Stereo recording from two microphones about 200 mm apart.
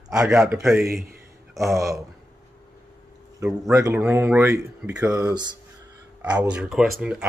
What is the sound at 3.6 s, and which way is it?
Speech, 15° right (ahead or behind).